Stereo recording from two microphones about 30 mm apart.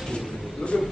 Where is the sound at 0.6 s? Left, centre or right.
Left.